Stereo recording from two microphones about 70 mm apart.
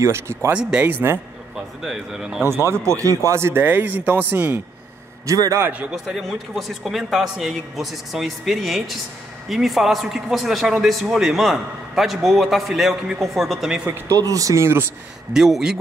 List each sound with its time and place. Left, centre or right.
0.0 s speech: right
0.5 s speech: centre
0.8 s a man's voice: right
1.8 s speech: centre
2.4 s speech: right
3.6 s a man's voice: right
5.2 s speech: right
5.7 s speech: centre
6.1 s a man's voice: centre
13.8 s speech: right
14.6 s speech: right
15.3 s speech: centre